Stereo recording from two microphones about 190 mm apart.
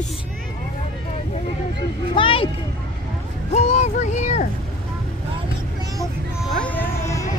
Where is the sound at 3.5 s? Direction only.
35° left (ahead or behind).